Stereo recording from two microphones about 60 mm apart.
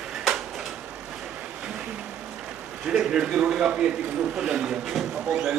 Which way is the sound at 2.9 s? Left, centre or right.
Centre.